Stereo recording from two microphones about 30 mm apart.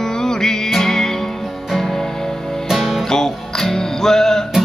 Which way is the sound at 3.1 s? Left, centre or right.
Centre.